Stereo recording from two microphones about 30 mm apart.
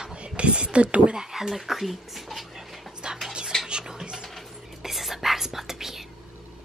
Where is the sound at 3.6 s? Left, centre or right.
Right.